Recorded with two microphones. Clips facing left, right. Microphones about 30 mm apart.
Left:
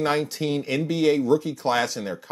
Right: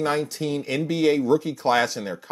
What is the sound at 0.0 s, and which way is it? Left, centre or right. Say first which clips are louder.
Speech: left 1 dB; centre.